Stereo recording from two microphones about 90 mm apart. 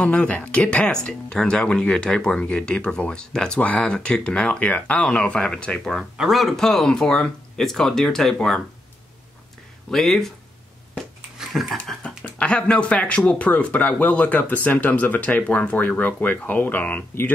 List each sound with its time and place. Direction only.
0.0 s speech: 15° left (ahead or behind)
6.1 s speech: centre (ahead or behind)
9.8 s speech: 5° left (ahead or behind)
11.4 s a sound: 5° right (ahead or behind)
11.9 s speech: 5° left (ahead or behind); by 17.3 s 20° left (ahead or behind)